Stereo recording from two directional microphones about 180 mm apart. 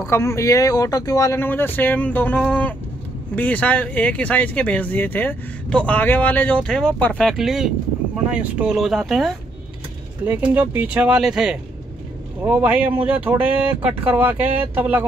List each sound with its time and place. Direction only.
0.0 s speech: 15° left (ahead or behind); by 15.0 s 10° right (ahead or behind)